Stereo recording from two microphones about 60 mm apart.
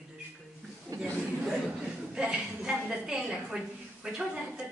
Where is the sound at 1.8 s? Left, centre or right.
Centre.